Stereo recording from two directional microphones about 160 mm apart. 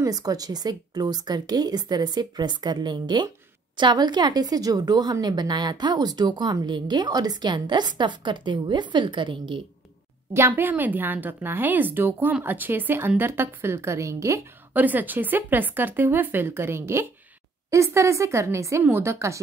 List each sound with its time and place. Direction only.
0.0 s a woman's voice: 20° right (ahead or behind)
10.3 s a woman's voice: 15° right (ahead or behind)